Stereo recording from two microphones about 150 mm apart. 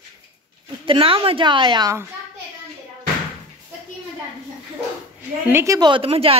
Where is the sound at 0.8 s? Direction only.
35° right (ahead or behind).